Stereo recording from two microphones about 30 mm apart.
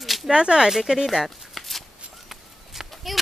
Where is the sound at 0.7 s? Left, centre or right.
Centre.